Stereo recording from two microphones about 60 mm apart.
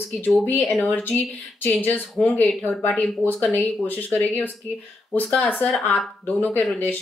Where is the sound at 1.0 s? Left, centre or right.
Left.